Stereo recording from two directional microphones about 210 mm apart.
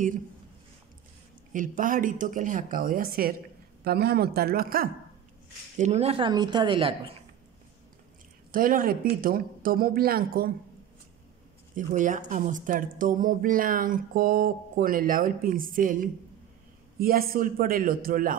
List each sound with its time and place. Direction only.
1.5 s a woman's voice: 40° right (ahead or behind)
5.8 s speech: 30° right (ahead or behind)
8.5 s a woman's voice: 40° right (ahead or behind)
11.7 s a woman's voice: 40° right (ahead or behind)